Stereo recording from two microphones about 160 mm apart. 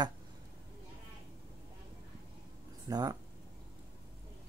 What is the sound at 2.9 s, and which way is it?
Speech, 25° right (ahead or behind).